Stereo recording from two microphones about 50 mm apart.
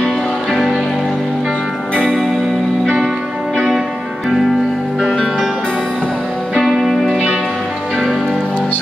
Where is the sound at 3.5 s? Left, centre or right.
Centre.